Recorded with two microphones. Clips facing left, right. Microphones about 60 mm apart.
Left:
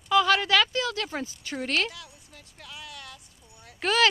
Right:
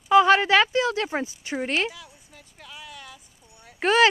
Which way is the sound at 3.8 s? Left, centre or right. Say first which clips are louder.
Right 4 dB; right.